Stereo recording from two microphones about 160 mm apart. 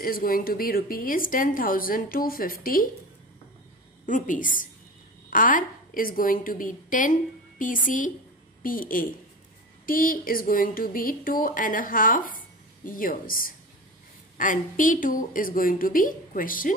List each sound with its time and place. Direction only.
0.0 s speech: 65° left (ahead or behind)
4.0 s speech: 55° left (ahead or behind)